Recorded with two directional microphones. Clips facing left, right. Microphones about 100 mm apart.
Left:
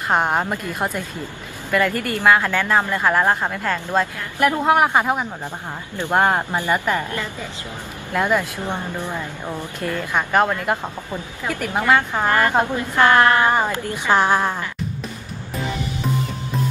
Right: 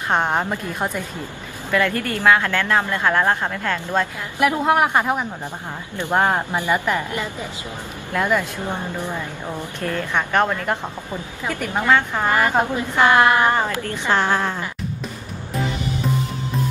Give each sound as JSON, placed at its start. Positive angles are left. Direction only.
{"t": 0.1, "sound": "a woman's voice", "side_deg": 5}
{"t": 4.4, "sound": "a woman's voice", "side_deg": -5}
{"t": 8.1, "sound": "speech", "side_deg": 10}
{"t": 9.8, "sound": "a woman's voice", "side_deg": 10}
{"t": 12.3, "sound": "a woman's voice", "side_deg": -10}
{"t": 13.5, "sound": "speech", "side_deg": 15}